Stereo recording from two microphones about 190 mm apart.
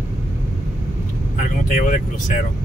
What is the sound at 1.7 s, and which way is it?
Speech, 40° left (ahead or behind).